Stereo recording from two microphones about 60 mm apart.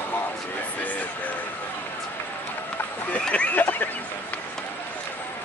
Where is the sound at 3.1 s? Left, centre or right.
Centre.